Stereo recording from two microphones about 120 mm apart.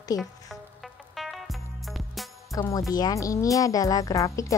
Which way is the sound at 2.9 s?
30° left (ahead or behind).